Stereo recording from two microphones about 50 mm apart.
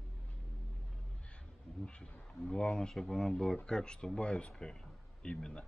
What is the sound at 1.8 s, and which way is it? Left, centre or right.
Speech, centre.